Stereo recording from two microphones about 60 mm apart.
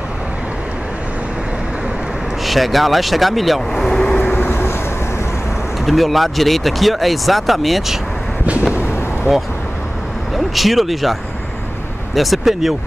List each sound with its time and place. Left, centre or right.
2.4 s speech: centre
4.2 s vehicle: left
5.9 s speech: centre
10.3 s speech: centre
12.2 s speech: centre